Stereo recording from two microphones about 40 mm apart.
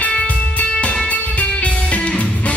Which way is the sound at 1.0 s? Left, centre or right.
Left.